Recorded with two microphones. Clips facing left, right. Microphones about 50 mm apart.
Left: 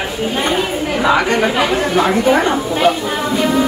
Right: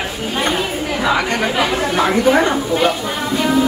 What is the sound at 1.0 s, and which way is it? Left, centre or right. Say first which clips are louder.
A woman's voice: left 4 dB; centre.